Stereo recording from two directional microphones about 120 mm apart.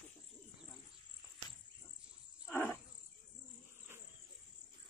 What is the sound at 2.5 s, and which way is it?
Cricket, 20° left (ahead or behind).